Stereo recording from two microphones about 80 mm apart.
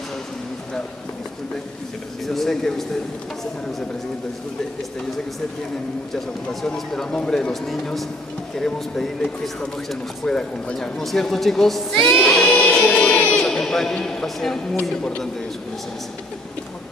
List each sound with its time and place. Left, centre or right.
2.2 s speech: centre
6.1 s speech: centre
12.2 s a sound: centre
12.8 s music: centre
13.2 s a sound: centre
13.5 s speech: centre